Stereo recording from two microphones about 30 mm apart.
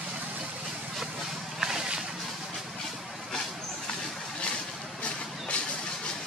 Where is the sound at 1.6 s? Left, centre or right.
Centre.